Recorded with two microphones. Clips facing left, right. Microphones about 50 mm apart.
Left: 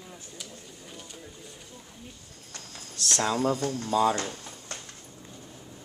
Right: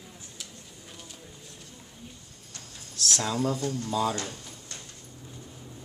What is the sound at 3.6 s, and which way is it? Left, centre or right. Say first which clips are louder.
Speech: left 1 dB; left.